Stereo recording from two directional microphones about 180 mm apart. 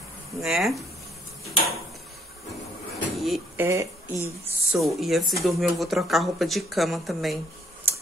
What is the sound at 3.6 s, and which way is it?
Speech, 15° right (ahead or behind).